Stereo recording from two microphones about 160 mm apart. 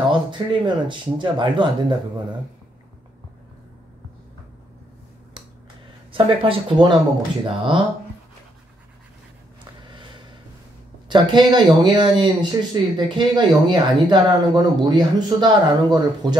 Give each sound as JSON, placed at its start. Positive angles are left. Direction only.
{"t": 0.1, "sound": "speech", "side_deg": -30}
{"t": 6.1, "sound": "speech", "side_deg": -35}
{"t": 9.8, "sound": "a sound", "side_deg": -30}
{"t": 11.1, "sound": "speech", "side_deg": -30}